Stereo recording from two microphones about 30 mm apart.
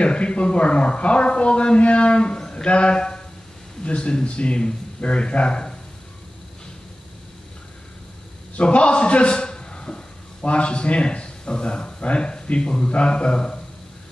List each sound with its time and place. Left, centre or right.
0.0 s speech: left
8.6 s speech: left
9.3 s a sound: left
10.4 s a man's voice: left